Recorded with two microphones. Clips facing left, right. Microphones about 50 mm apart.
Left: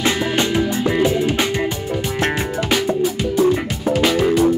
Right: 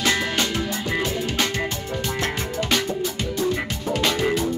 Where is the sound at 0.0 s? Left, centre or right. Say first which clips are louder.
Left 4 dB; centre.